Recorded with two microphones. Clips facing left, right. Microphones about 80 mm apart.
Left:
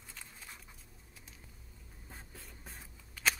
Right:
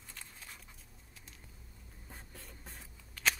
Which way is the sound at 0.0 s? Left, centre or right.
Centre.